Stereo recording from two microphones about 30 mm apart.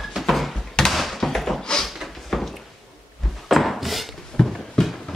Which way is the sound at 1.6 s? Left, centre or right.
Centre.